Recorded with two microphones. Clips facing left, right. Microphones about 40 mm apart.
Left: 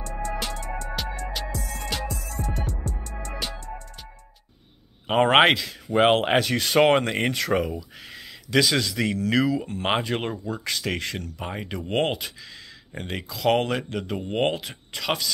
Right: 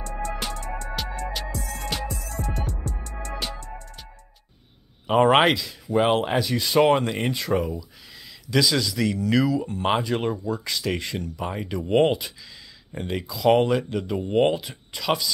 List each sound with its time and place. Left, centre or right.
0.9 s music: centre
5.0 s speech: left
7.3 s speech: left
7.7 s speech: left
11.4 s speech: left
11.9 s speech: left
14.2 s speech: left
14.5 s speech: left